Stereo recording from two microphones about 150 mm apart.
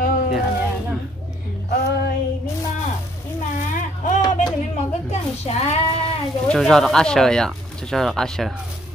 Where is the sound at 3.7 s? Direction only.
60° left (ahead or behind).